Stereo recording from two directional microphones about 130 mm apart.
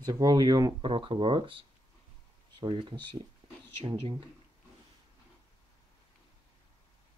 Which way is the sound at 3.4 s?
50° right (ahead or behind).